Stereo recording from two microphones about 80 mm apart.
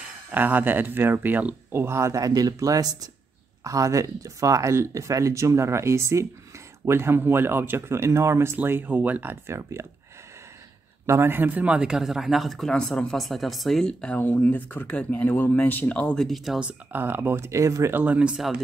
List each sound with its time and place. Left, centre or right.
0.3 s speech: right
8.5 s speech: right
9.5 s speech: right
11.1 s speech: right; by 14.2 s centre
14.2 s speech: left
16.2 s speech: centre
16.9 s speech: right
17.9 s speech: centre